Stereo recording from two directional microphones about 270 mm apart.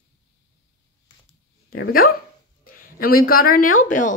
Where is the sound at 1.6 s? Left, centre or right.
Left.